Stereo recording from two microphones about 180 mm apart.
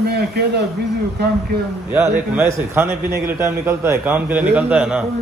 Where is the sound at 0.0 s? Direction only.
60° right (ahead or behind).